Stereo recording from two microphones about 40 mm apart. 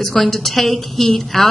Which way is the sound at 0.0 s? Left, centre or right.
Centre.